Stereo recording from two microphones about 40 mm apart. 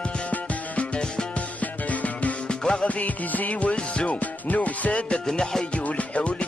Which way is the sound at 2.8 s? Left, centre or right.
Left.